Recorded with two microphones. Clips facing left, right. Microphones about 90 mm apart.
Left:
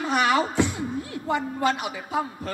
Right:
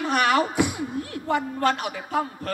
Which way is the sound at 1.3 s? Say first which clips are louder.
Right 1 dB; 15° left (ahead or behind).